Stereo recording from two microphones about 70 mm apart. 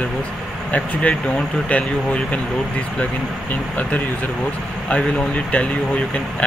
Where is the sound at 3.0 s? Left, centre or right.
Left.